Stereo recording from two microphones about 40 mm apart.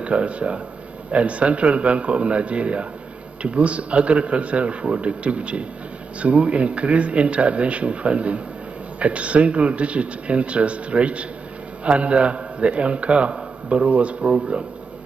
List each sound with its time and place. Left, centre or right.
0.0 s a man's voice: right